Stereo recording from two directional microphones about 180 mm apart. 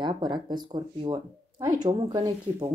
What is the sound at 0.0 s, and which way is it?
Speech, 25° right (ahead or behind).